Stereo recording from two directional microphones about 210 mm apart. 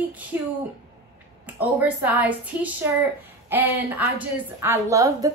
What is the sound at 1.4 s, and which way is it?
A woman's voice, 10° right (ahead or behind).